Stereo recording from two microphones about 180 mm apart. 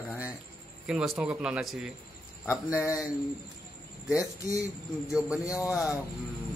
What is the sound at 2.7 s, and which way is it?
Speech, 15° left (ahead or behind).